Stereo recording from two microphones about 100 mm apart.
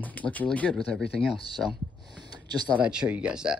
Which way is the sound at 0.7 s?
Centre (ahead or behind).